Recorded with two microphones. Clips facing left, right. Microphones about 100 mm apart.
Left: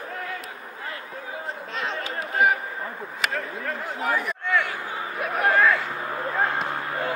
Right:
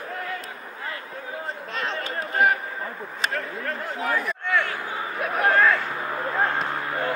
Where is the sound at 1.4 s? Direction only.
Centre (ahead or behind).